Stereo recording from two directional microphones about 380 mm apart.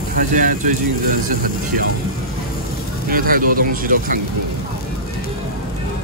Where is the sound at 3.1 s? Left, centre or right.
Right.